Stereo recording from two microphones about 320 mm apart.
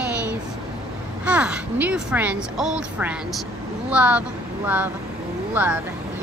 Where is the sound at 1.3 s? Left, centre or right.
Centre.